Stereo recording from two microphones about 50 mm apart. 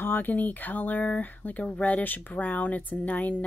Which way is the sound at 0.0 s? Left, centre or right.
Left.